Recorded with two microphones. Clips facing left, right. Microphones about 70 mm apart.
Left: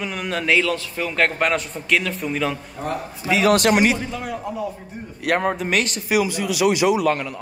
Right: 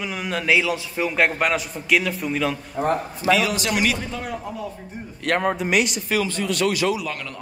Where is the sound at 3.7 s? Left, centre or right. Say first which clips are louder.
Left 5 dB; left.